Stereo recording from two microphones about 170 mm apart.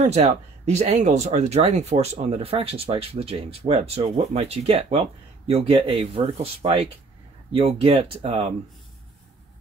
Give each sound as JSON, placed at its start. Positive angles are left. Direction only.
{"t": 0.0, "sound": "speech", "side_deg": -40}